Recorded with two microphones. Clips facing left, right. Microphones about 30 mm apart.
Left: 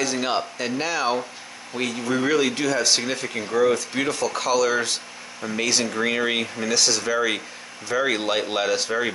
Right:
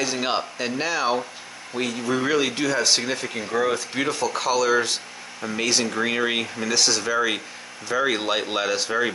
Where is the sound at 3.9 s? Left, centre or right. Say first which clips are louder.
Even; centre.